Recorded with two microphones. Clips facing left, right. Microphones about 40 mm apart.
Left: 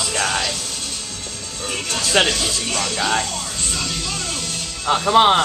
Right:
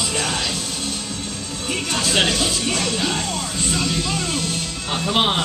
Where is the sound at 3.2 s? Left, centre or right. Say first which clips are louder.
Right 2 dB; centre.